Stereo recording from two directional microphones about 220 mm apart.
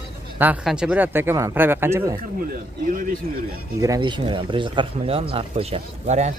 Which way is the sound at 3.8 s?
20° right (ahead or behind).